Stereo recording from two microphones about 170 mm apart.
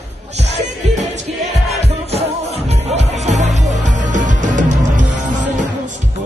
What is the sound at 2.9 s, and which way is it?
Music, 40° right (ahead or behind).